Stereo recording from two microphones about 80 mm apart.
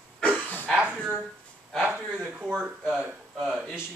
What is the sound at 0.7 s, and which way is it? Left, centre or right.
Speech, centre.